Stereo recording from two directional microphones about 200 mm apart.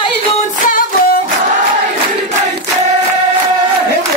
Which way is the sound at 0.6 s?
45° left (ahead or behind).